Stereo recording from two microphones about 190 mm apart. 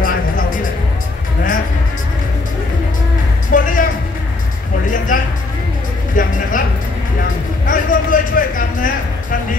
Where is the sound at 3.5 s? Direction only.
45° left (ahead or behind).